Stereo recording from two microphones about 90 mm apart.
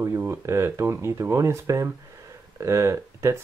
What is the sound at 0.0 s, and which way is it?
Speech, 30° right (ahead or behind).